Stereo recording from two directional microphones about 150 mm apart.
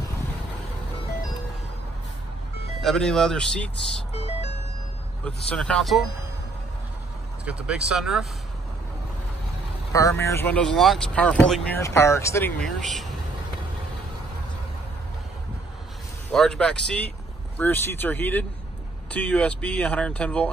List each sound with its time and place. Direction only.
2.8 s speech: centre (ahead or behind)
4.1 s music: 45° left (ahead or behind)
5.2 s speech: 5° left (ahead or behind)
7.4 s speech: 5° right (ahead or behind)
9.9 s speech: 20° left (ahead or behind); by 11.8 s 5° left (ahead or behind)
11.8 s speech: 20° left (ahead or behind)
12.5 s speech: 5° left (ahead or behind)
16.3 s speech: 5° left (ahead or behind)